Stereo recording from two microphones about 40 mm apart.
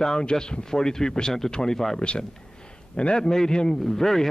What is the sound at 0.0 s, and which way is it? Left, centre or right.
A man's voice, centre.